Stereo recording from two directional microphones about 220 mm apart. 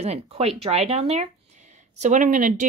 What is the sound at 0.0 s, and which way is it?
Speech, 30° right (ahead or behind).